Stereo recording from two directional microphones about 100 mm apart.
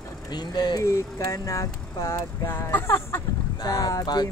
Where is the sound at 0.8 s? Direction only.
30° left (ahead or behind).